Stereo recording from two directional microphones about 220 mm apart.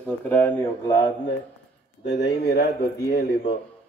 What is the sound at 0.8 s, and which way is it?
Speech, 20° left (ahead or behind).